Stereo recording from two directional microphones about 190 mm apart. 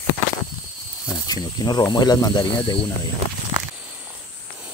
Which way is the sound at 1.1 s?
20° left (ahead or behind).